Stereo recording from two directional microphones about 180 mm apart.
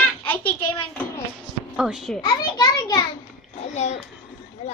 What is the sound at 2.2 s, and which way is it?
Speech, 20° left (ahead or behind).